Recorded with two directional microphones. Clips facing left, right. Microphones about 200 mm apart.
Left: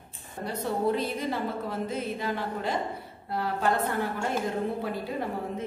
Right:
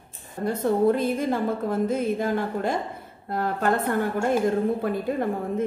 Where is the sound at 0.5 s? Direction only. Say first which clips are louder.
Right 7 dB; 50° right (ahead or behind).